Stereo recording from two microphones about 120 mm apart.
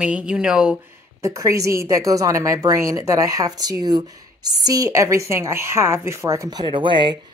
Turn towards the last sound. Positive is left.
turn(degrees=-45)  # may be behind; listen again after turning